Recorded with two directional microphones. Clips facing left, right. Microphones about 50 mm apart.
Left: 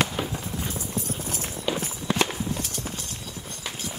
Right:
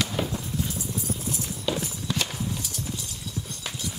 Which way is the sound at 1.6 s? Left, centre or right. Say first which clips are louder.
Left 2 dB; left.